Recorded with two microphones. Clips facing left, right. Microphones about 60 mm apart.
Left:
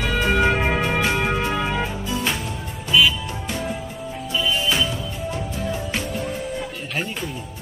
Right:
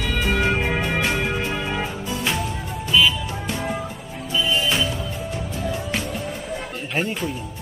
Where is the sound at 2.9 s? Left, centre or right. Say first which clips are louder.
Left 1 dB; centre.